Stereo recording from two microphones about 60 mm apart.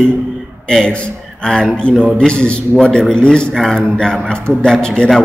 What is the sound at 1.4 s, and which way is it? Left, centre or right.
A man's voice, centre.